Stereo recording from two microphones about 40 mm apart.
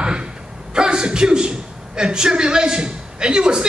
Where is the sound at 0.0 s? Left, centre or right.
Right.